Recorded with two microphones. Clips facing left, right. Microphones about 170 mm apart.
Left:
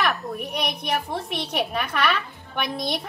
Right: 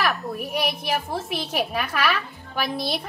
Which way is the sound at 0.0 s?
Centre (ahead or behind).